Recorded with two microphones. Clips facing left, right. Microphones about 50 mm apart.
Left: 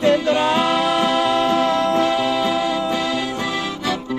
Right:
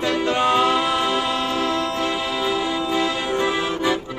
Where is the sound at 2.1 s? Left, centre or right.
Right.